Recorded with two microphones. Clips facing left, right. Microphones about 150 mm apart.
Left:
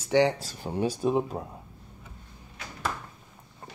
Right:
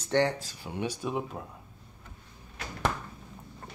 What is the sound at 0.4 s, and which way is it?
Speech, 35° left (ahead or behind).